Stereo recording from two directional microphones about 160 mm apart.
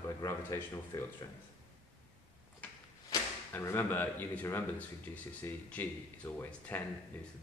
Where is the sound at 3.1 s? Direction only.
15° left (ahead or behind).